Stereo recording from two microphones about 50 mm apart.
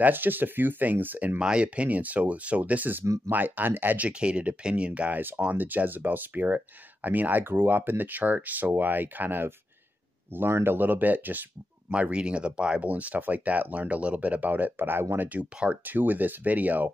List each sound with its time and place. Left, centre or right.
0.0 s speech: right
1.4 s speech: right
4.1 s speech: right
10.5 s speech: right
11.9 s speech: right
12.9 s speech: right
15.1 s speech: right